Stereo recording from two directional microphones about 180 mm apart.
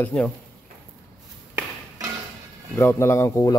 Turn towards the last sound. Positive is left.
turn(degrees=15)  # may be behind; listen again after turning